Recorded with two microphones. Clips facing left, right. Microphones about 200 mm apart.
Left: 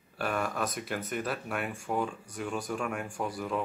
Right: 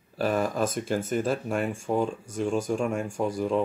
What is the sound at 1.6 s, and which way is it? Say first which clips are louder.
Speech: right 6 dB; 45° right (ahead or behind).